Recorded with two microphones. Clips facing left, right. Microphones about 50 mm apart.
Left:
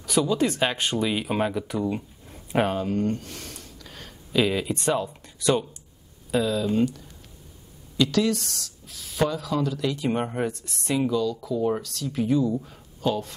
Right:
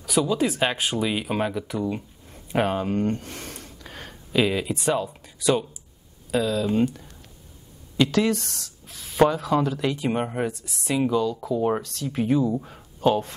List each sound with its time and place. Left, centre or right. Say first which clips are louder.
0.0 s speech: even; centre
2.7 s a sound: right 1 dB; right
4.3 s speech: right 1 dB; centre
8.0 s speech: right 1 dB; right
10.0 s speech: right 1 dB; centre
11.1 s speech: right 2 dB; right